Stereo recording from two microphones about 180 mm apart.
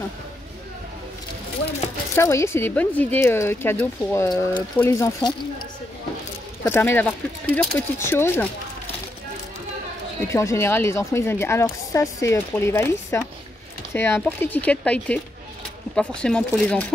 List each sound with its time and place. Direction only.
2.1 s speech: 15° left (ahead or behind)
6.6 s speech: 10° left (ahead or behind)
10.2 s speech: 15° left (ahead or behind)